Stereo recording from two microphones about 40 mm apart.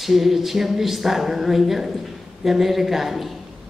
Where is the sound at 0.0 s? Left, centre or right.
Centre.